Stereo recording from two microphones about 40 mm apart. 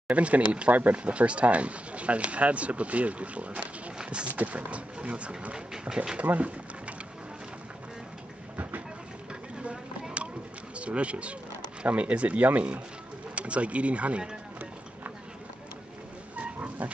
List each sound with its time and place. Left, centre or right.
0.1 s speech: right
4.0 s a sound: right
4.3 s speech: right
5.5 s speech: centre
6.3 s speech: right
9.3 s a sound: right
10.8 s speech: right
16.3 s dog: right